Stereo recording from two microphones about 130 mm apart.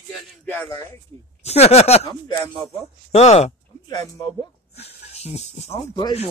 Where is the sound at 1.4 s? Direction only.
55° left (ahead or behind).